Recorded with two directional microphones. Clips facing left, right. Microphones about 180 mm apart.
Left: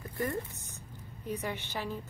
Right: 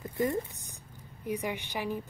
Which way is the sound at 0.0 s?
20° right (ahead or behind).